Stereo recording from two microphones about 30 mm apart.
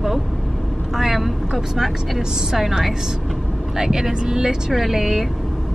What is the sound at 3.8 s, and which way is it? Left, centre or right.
Speech, centre.